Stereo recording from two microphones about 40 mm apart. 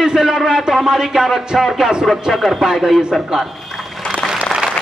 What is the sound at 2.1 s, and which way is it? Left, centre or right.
Speech, centre.